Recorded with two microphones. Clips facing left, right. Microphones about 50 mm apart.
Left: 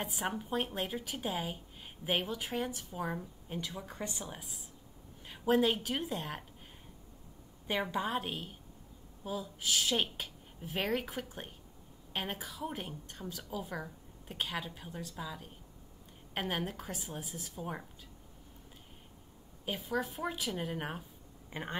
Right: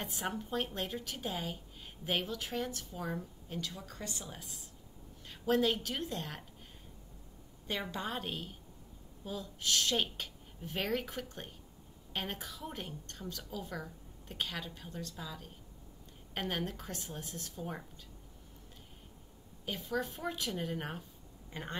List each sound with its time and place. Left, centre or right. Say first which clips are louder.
0.0 s speech: left 2 dB; centre
7.6 s speech: left 4 dB; centre
19.6 s speech: left 1 dB; centre
21.5 s speech: left 2 dB; centre